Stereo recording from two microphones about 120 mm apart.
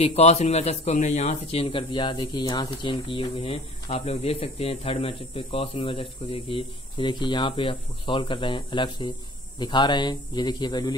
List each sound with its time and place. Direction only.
0.0 s speech: 60° left (ahead or behind); by 11.0 s 35° left (ahead or behind)